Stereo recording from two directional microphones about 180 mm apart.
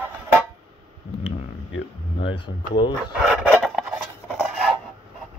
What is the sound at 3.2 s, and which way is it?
Filing, 5° right (ahead or behind).